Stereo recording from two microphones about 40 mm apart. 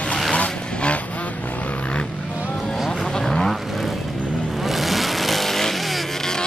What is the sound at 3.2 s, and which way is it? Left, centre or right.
Vehicle, centre.